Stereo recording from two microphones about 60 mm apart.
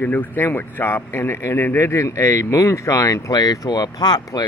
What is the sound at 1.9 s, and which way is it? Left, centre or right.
Speech, left.